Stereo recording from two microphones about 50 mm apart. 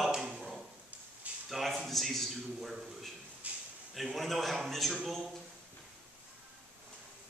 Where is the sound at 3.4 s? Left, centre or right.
Right.